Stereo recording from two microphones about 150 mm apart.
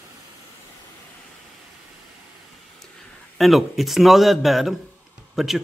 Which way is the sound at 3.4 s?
Centre (ahead or behind).